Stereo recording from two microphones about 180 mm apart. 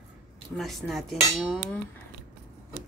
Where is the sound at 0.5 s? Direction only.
Centre (ahead or behind).